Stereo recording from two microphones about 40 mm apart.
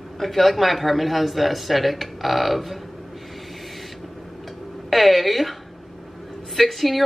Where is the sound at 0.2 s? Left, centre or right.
Centre.